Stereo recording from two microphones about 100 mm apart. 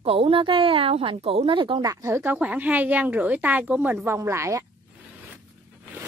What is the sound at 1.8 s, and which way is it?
Speech, 35° right (ahead or behind).